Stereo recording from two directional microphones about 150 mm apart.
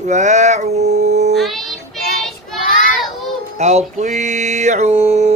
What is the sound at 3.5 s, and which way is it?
Male singing, 50° right (ahead or behind).